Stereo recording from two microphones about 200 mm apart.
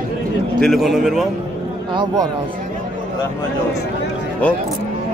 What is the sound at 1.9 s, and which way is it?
Speech, 20° right (ahead or behind).